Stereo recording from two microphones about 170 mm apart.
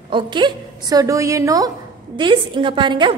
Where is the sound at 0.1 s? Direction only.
25° right (ahead or behind).